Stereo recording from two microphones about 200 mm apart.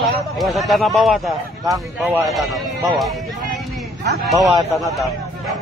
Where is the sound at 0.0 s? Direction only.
Centre (ahead or behind).